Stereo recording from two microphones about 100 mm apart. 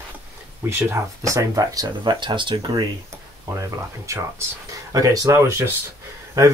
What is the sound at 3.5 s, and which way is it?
Speech, 30° right (ahead or behind).